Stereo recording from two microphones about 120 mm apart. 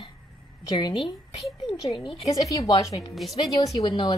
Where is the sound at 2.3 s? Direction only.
30° left (ahead or behind).